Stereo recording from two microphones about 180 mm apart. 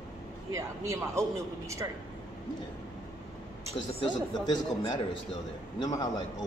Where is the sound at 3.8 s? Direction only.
25° left (ahead or behind).